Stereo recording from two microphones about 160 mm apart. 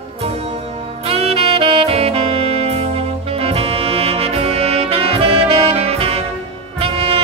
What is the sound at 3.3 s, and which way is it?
Brass instrument, 40° right (ahead or behind).